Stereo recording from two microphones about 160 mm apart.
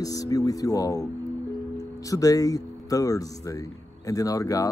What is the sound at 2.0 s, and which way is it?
Speech, 20° left (ahead or behind).